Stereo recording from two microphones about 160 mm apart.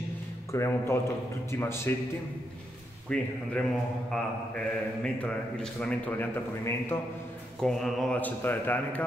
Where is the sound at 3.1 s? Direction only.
5° left (ahead or behind).